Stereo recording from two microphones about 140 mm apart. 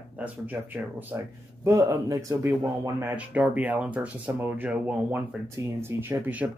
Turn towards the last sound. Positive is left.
turn(degrees=-15)  # may be behind; listen again after turning